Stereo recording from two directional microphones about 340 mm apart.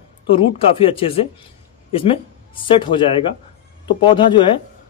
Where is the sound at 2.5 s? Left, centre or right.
Centre.